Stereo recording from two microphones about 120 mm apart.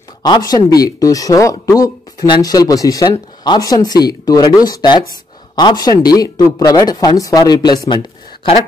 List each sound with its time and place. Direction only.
0.2 s speech: 35° left (ahead or behind)